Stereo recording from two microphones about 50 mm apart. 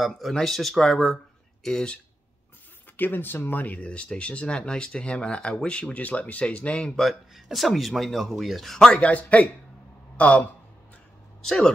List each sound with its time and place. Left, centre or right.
0.0 s speech: centre
3.0 s speech: left
7.0 s speech: centre
8.9 s speech: left
11.4 s speech: centre